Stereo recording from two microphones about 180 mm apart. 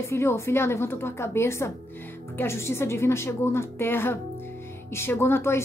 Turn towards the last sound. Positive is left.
turn(degrees=15)  # may be behind; listen again after turning